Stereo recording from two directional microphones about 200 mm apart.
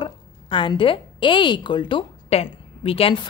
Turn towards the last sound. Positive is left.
turn(degrees=30)  # may be behind; listen again after turning